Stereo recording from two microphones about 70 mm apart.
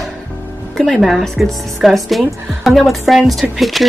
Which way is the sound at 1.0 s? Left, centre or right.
Centre.